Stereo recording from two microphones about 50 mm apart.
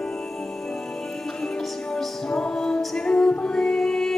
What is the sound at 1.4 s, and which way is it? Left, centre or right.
Music, centre.